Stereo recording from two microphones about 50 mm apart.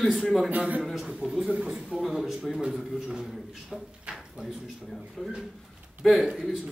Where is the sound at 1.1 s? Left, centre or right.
Centre.